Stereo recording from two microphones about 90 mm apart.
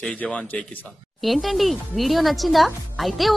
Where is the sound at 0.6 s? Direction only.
Centre (ahead or behind).